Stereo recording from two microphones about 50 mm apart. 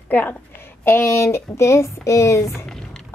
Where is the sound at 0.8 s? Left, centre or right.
Left.